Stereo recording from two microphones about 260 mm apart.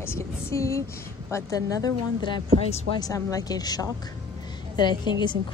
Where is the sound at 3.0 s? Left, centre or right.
Centre.